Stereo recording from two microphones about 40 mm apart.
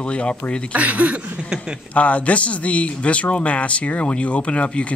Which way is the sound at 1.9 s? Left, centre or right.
Left.